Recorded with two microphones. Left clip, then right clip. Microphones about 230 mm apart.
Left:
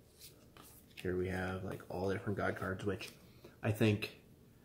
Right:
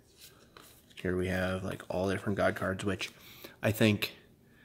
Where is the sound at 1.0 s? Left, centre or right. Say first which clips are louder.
Right 6 dB; right.